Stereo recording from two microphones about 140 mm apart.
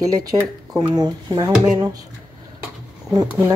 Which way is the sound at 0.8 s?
30° right (ahead or behind).